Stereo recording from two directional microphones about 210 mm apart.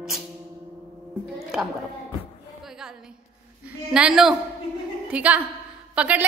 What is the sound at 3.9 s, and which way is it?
A woman's voice, 5° right (ahead or behind).